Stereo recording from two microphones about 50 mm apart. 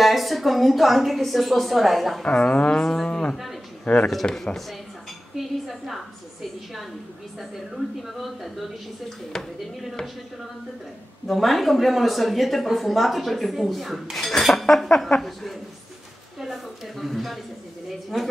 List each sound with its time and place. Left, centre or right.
0.0 s speech: centre
2.2 s music: left
3.1 s speech: left
5.4 s speech: centre
7.3 s speech: centre
11.2 s speech: centre
16.3 s speech: centre